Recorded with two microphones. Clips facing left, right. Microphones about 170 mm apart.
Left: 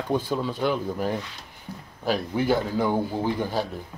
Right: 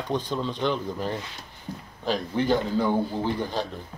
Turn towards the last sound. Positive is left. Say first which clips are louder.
# left 2 dB
turn(degrees=10)  # may be behind; listen again after turning